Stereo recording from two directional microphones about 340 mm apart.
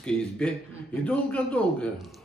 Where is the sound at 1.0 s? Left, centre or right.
Centre.